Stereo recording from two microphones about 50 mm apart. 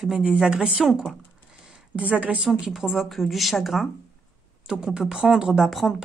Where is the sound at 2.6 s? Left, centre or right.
Centre.